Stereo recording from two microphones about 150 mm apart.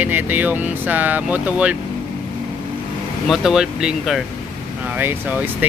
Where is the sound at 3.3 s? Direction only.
5° right (ahead or behind).